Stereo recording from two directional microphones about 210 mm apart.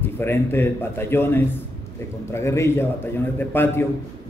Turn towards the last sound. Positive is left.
turn(degrees=10)  # may be behind; listen again after turning